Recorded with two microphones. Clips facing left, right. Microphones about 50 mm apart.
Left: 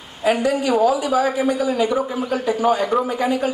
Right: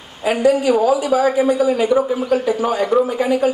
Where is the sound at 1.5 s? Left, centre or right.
Centre.